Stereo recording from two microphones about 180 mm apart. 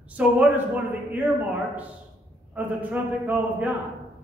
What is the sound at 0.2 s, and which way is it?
A man's voice, 5° right (ahead or behind).